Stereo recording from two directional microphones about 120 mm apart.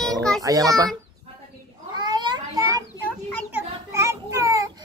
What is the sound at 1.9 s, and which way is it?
Children playing, 40° right (ahead or behind).